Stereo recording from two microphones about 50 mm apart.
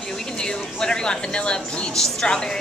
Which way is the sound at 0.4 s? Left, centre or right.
Centre.